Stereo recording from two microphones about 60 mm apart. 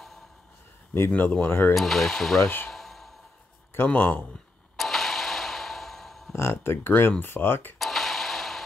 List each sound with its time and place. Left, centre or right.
1.1 s speech: left
1.8 s speech: centre
2.4 s speech: left
2.7 s sigh: centre
3.7 s speech: left
4.7 s a sound: centre
6.3 s speech: left
7.8 s a sound: centre